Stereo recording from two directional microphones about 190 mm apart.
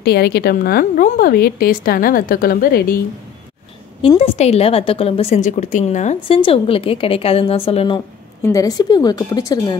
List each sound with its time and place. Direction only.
0.0 s a woman's voice: 60° left (ahead or behind)
4.0 s a woman's voice: 30° left (ahead or behind)
8.4 s a woman's voice: 15° left (ahead or behind)